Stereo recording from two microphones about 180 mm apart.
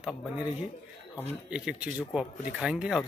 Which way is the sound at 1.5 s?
5° right (ahead or behind).